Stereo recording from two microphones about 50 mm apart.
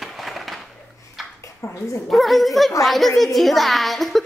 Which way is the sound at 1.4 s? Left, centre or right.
Left.